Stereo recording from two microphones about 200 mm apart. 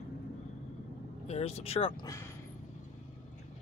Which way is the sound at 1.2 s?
30° left (ahead or behind).